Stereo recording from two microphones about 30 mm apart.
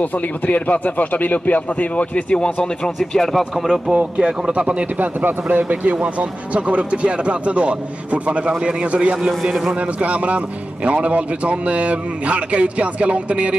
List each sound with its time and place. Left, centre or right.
0.0 s speech: left
2.3 s speech: left
3.1 s speech: centre
3.6 s a man's voice: centre
3.9 s speech: right
4.9 s a man's voice: right
9.4 s a man's voice: centre
9.8 s a man's voice: right